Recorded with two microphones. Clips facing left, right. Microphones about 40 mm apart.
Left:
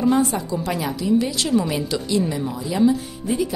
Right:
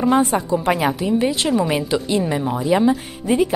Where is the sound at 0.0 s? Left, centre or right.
Right.